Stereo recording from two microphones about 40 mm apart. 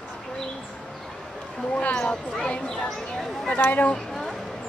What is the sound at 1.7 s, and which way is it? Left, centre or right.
Speech, left.